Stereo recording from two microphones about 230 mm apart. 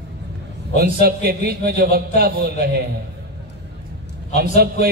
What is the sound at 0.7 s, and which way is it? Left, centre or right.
A man's voice, right.